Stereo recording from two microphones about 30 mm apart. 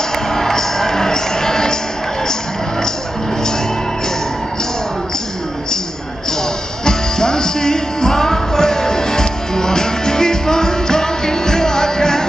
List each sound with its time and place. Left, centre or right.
0.3 s music: centre
6.8 s music: left